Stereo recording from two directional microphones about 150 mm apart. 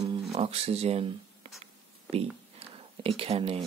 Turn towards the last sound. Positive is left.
turn(degrees=-40)  # may be behind; listen again after turning